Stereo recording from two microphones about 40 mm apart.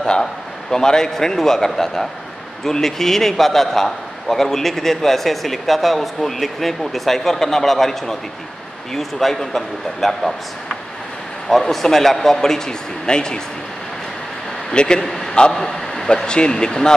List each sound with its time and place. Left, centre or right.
0.0 s a man's voice: centre
11.4 s a man's voice: centre
14.7 s speech: left
15.6 s a sound: centre
16.1 s speech: left